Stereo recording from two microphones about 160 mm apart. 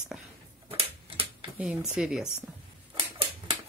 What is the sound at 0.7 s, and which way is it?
Tick-tock, 35° right (ahead or behind).